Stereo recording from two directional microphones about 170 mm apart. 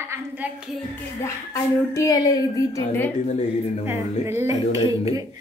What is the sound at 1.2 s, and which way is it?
Speech, 15° left (ahead or behind).